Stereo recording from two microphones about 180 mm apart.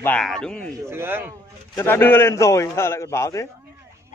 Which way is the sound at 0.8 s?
15° right (ahead or behind).